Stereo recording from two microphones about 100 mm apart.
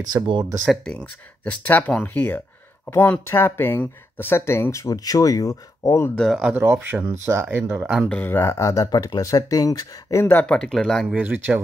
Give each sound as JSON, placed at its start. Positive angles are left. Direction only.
{"t": 0.0, "sound": "speech", "side_deg": -45}
{"t": 0.9, "sound": "speech", "side_deg": 15}
{"t": 6.1, "sound": "speech", "side_deg": 5}
{"t": 6.5, "sound": "speech", "side_deg": -25}
{"t": 8.1, "sound": "speech", "side_deg": 20}
{"t": 10.2, "sound": "speech", "side_deg": 15}
{"t": 11.1, "sound": "speech", "side_deg": -15}